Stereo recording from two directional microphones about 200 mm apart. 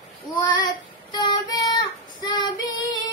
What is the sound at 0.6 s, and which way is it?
Child singing, 20° left (ahead or behind).